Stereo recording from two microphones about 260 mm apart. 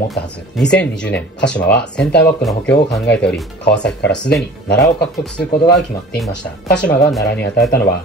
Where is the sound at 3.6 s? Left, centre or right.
Left.